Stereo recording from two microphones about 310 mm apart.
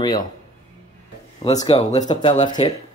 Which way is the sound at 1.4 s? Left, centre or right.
Centre.